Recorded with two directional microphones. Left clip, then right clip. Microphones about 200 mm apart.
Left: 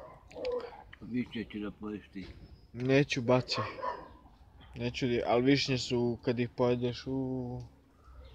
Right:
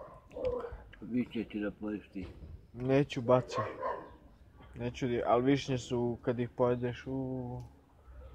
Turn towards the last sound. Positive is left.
turn(degrees=20)  # may be behind; listen again after turning